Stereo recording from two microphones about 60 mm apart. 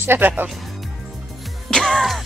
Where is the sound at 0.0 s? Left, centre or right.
Right.